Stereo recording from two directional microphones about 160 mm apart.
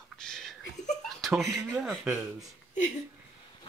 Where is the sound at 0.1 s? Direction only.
5° left (ahead or behind).